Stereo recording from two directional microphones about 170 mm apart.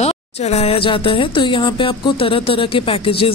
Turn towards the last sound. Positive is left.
turn(degrees=35)  # may be behind; listen again after turning